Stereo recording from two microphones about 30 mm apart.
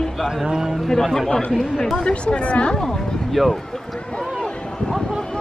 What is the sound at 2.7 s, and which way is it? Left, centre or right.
Speech, centre.